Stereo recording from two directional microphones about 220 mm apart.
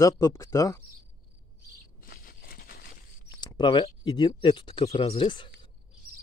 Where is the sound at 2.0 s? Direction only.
40° left (ahead or behind).